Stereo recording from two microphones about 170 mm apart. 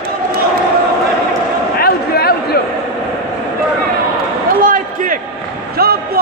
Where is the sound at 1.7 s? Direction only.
65° left (ahead or behind).